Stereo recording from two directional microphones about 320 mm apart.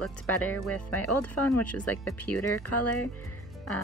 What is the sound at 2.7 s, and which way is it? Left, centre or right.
Speech, left.